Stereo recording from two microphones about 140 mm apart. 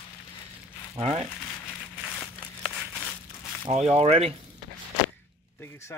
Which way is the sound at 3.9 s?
45° right (ahead or behind).